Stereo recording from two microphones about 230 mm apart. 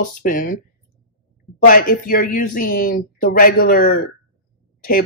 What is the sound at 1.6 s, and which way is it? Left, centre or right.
Speech, left.